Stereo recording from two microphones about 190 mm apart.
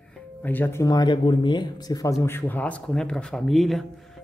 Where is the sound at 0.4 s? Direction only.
10° left (ahead or behind).